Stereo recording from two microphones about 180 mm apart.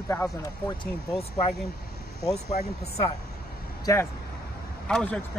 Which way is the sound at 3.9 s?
15° left (ahead or behind).